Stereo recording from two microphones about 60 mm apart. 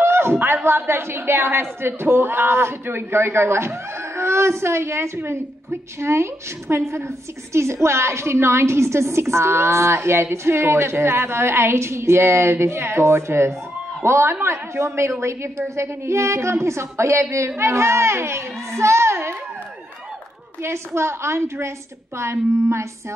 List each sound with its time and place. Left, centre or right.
0.0 s a sound: right
0.7 s a woman's voice: right
20.6 s a woman's voice: right